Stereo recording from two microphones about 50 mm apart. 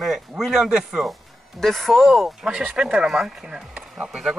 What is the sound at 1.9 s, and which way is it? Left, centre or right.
Speech, centre.